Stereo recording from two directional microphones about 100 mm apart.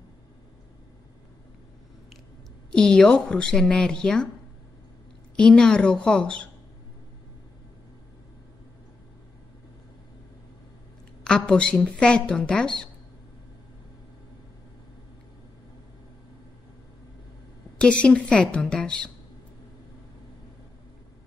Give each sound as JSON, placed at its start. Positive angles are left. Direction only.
{"t": 2.7, "sound": "speech", "side_deg": 5}
{"t": 5.3, "sound": "speech", "side_deg": 10}
{"t": 11.2, "sound": "speech", "side_deg": 10}
{"t": 17.7, "sound": "speech", "side_deg": 10}